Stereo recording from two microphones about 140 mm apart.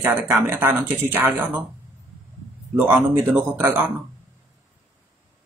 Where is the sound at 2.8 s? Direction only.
10° right (ahead or behind).